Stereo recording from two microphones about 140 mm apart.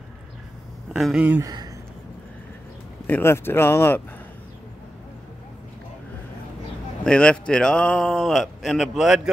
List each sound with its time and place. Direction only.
0.9 s a man's voice: 5° right (ahead or behind)
1.4 s speech: 30° right (ahead or behind)
3.1 s speech: 15° left (ahead or behind)
7.1 s a man's voice: 5° left (ahead or behind)